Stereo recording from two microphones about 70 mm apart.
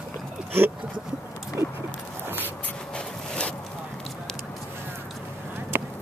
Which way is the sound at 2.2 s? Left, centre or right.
Right.